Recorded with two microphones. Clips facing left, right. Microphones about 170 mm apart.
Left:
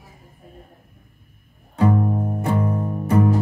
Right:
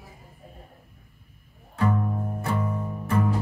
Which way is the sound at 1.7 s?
15° left (ahead or behind).